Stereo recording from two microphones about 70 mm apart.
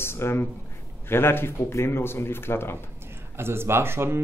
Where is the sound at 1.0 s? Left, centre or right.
Left.